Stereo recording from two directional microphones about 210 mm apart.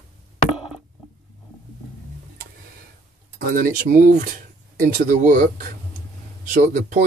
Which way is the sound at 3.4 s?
40° right (ahead or behind).